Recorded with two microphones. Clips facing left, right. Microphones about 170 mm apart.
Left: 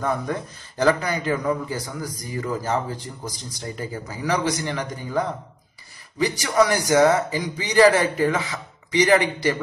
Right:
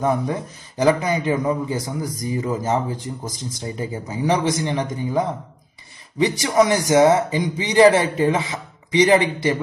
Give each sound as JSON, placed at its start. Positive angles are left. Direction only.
{"t": 0.0, "sound": "speech", "side_deg": -15}